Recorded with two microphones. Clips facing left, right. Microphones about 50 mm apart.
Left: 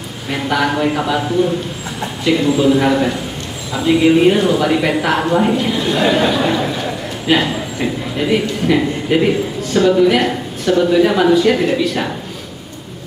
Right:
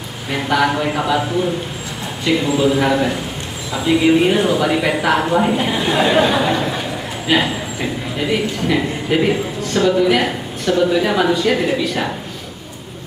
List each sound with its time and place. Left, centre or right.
0.3 s a man's voice: centre
5.6 s a man's voice: centre
7.2 s a man's voice: centre